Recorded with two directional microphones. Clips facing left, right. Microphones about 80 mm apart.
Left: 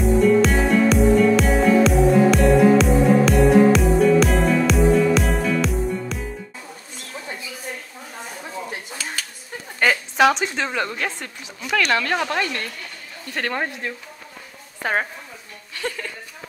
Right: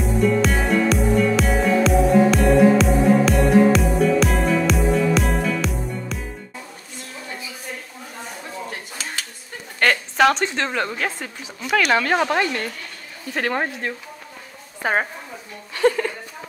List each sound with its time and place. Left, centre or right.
0.0 s music: centre
8.5 s a sound: centre
9.8 s a woman's voice: centre
15.7 s speech: right